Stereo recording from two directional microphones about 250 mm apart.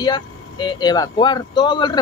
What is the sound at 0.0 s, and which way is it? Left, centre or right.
Speech, centre.